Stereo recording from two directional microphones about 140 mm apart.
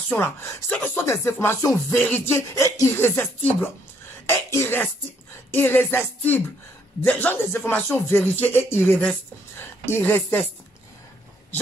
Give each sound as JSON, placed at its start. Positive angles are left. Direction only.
{"t": 0.2, "sound": "speech", "side_deg": 15}
{"t": 4.3, "sound": "speech", "side_deg": 20}